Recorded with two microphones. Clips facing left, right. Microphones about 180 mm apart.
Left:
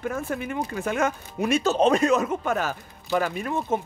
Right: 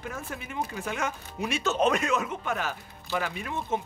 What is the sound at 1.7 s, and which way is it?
Speech, 30° left (ahead or behind).